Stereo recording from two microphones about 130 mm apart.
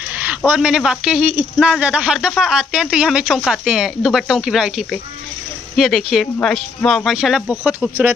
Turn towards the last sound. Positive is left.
turn(degrees=-10)  # may be behind; listen again after turning